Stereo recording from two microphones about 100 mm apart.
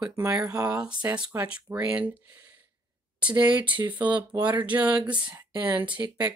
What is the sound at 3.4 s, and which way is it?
Speech, 15° right (ahead or behind).